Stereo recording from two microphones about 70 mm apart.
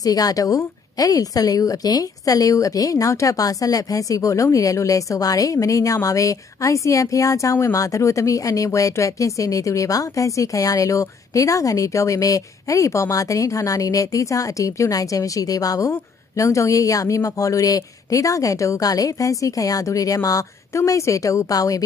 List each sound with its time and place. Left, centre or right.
0.0 s a woman's voice: left